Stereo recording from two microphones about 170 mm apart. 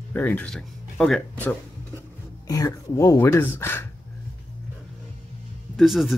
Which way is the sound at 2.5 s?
20° left (ahead or behind).